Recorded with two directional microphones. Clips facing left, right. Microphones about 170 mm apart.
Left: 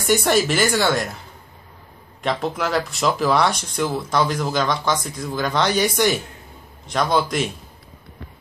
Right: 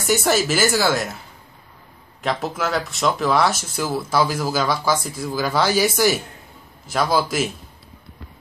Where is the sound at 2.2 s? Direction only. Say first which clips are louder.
Left 1 dB; centre (ahead or behind).